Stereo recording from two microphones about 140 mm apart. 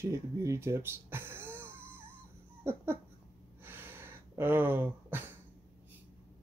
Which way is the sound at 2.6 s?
15° right (ahead or behind).